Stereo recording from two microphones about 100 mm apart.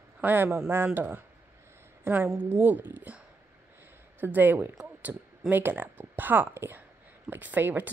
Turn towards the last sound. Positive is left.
turn(degrees=-20)  # may be behind; listen again after turning